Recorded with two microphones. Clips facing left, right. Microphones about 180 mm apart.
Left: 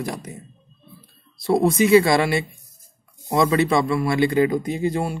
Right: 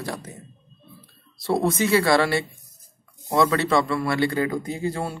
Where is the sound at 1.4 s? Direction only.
15° left (ahead or behind).